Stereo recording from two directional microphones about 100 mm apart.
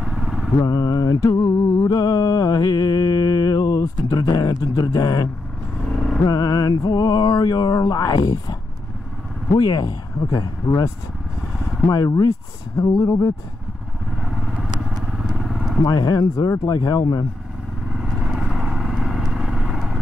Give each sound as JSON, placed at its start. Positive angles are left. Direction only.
{"t": 0.0, "sound": "vehicle", "side_deg": -5}
{"t": 0.6, "sound": "mantra", "side_deg": 40}
{"t": 9.6, "sound": "mantra", "side_deg": 45}
{"t": 11.9, "sound": "mantra", "side_deg": 40}
{"t": 15.1, "sound": "vehicle", "side_deg": 0}
{"t": 15.8, "sound": "speech", "side_deg": 45}
{"t": 16.4, "sound": "mantra", "side_deg": 30}
{"t": 16.7, "sound": "mantra", "side_deg": 40}
{"t": 17.9, "sound": "vehicle", "side_deg": -5}